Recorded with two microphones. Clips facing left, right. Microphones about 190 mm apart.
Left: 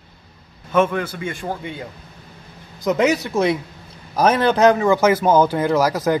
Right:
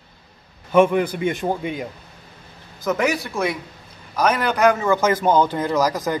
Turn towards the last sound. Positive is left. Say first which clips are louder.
# left 3 dB
turn(degrees=10)  # may be behind; listen again after turning